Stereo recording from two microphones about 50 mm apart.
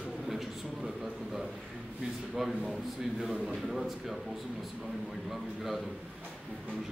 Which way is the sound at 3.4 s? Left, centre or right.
Centre.